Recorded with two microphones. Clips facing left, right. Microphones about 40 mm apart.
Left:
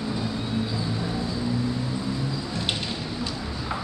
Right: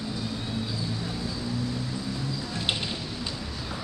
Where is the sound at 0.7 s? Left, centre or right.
Left.